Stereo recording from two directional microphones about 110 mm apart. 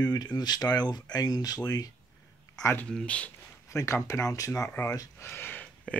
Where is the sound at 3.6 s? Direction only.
30° left (ahead or behind).